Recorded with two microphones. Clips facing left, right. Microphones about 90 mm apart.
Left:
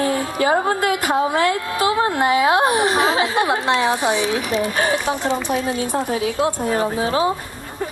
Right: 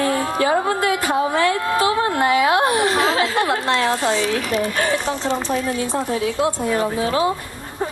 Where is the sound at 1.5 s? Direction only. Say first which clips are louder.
Right 1 dB; 40° right (ahead or behind).